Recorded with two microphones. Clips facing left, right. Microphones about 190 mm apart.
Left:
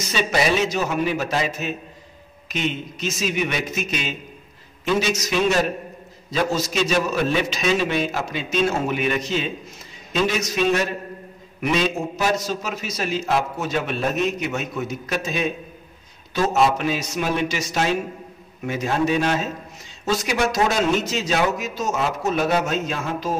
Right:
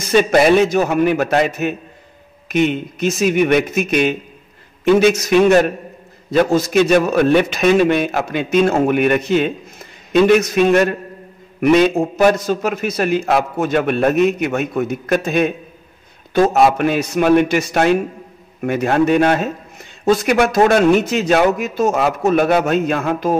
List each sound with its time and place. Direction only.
0.0 s a man's voice: 55° right (ahead or behind)